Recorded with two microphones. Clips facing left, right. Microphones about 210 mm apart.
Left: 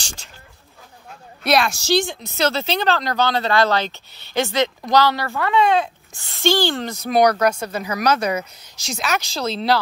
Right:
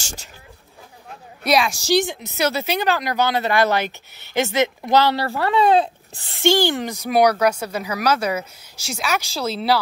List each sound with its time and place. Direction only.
1.7 s speech: 15° right (ahead or behind); by 6.4 s 35° right (ahead or behind)
6.6 s speech: 15° right (ahead or behind)